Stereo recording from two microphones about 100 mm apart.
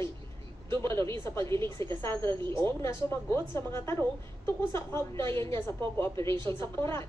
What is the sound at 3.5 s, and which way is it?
A woman's voice, 25° left (ahead or behind).